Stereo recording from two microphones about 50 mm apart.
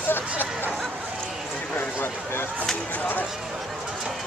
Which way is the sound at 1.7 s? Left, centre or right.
Left.